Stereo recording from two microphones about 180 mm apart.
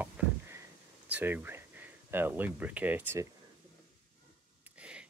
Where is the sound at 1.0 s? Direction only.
10° right (ahead or behind).